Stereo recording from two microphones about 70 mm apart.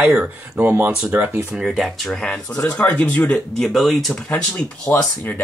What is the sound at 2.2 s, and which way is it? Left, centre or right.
Speech, centre.